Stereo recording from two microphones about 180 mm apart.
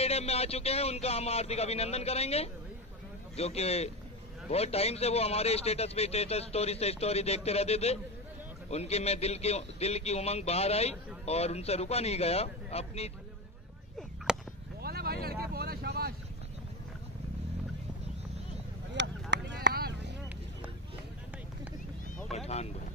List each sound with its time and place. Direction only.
0.0 s a man's voice: 35° left (ahead or behind)
14.3 s chop: 5° right (ahead or behind)
14.8 s vehicle: 60° right (ahead or behind)
19.0 s a sound: 75° right (ahead or behind)
19.3 s vehicle: 65° right (ahead or behind)
22.3 s vehicle: 35° left (ahead or behind)